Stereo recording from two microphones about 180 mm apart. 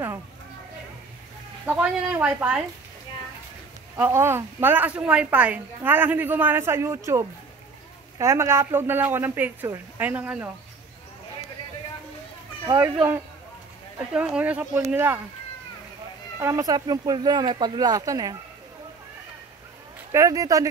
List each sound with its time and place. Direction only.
1.7 s a woman's voice: 10° right (ahead or behind)
3.9 s a woman's voice: 15° right (ahead or behind)
12.6 s speech: 15° right (ahead or behind)
14.1 s a woman's voice: 5° right (ahead or behind)
16.3 s speech: 15° right (ahead or behind)
20.1 s speech: 20° right (ahead or behind)